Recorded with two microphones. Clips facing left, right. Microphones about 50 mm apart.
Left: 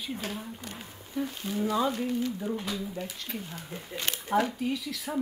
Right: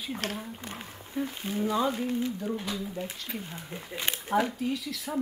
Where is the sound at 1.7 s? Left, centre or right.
Centre.